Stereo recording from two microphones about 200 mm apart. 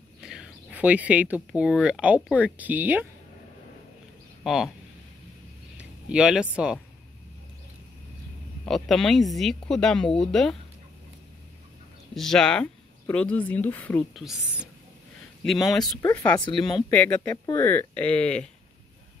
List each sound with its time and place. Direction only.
0.2 s speech: 5° right (ahead or behind)
4.4 s speech: centre (ahead or behind)
5.8 s speech: 5° right (ahead or behind)
8.6 s speech: centre (ahead or behind)
12.2 s speech: centre (ahead or behind)
16.0 s speech: 10° left (ahead or behind)
16.3 s speech: 25° left (ahead or behind)
16.9 s speech: 5° left (ahead or behind)